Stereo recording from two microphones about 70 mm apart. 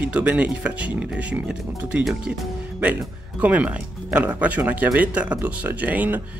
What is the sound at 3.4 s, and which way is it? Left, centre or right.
Speech, centre.